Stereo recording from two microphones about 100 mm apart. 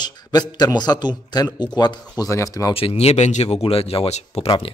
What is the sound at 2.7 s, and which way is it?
Speech, 80° left.